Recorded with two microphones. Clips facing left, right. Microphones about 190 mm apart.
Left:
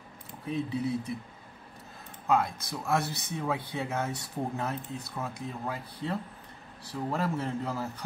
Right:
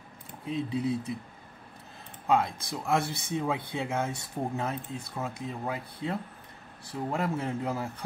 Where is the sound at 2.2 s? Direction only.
25° right (ahead or behind).